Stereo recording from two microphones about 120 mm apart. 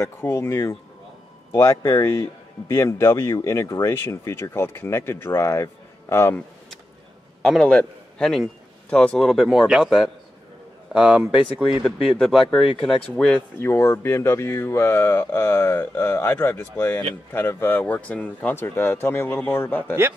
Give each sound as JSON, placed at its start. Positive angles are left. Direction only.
{"t": 0.0, "sound": "speech", "side_deg": 20}
{"t": 7.4, "sound": "a man's voice", "side_deg": 5}
{"t": 13.6, "sound": "speech", "side_deg": 20}